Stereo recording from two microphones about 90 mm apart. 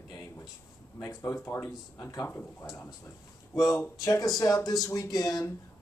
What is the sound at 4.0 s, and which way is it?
Speech, 40° left (ahead or behind).